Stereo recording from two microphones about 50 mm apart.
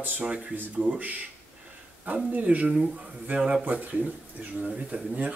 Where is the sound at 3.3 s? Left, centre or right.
Centre.